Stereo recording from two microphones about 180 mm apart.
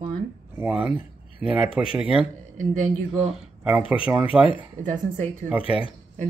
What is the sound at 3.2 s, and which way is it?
Speech, 5° right (ahead or behind).